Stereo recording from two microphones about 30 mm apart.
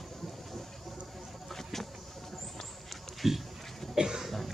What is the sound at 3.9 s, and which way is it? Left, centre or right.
Cough, centre.